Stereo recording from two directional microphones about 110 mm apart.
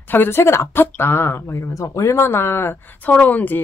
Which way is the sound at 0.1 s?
20° left (ahead or behind).